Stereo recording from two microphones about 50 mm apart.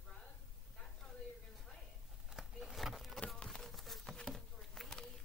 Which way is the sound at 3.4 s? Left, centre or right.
Centre.